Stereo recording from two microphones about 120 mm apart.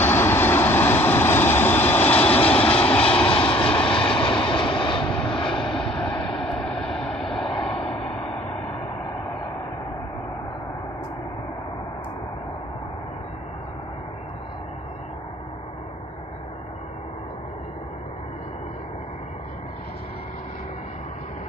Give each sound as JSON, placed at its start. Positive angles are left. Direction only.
{"t": 0.0, "sound": "vehicle", "side_deg": 20}
{"t": 3.3, "sound": "vehicle", "side_deg": 45}
{"t": 3.6, "sound": "vehicle", "side_deg": 10}
{"t": 3.9, "sound": "vehicle", "side_deg": 45}
{"t": 5.9, "sound": "vehicle", "side_deg": 5}